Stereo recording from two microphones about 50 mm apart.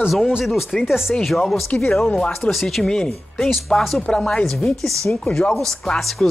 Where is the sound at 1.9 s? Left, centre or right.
Centre.